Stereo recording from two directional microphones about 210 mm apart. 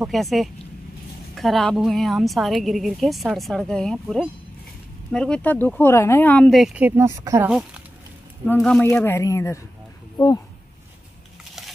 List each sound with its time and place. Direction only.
0.0 s a woman's voice: centre (ahead or behind)
8.5 s speech: 5° left (ahead or behind)